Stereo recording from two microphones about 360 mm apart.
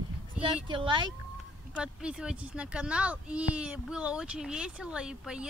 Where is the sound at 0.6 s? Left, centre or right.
Centre.